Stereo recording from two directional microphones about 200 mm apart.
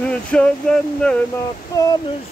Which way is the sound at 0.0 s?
5° left (ahead or behind).